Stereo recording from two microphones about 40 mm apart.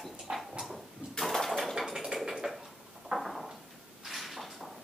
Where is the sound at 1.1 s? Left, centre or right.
Centre.